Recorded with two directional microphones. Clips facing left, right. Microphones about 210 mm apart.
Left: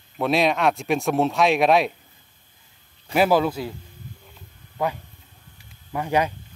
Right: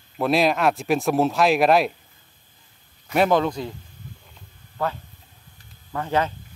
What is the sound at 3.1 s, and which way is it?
Speech, 5° left (ahead or behind).